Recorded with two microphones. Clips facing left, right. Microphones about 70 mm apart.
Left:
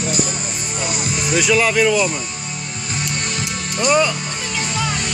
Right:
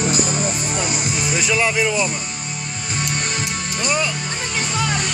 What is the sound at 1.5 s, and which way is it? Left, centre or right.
Speech, centre.